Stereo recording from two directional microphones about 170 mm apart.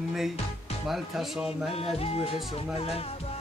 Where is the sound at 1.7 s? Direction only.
35° left (ahead or behind).